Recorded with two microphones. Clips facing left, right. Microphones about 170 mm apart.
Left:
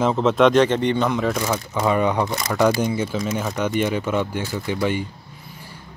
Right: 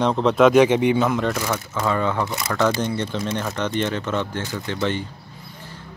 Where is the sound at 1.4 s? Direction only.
15° left (ahead or behind).